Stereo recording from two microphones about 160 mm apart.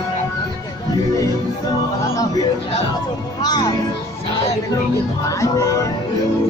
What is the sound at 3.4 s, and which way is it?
Speech, 25° left (ahead or behind).